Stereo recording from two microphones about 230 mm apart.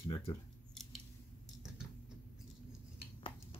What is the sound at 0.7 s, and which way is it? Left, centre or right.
Scissors, centre.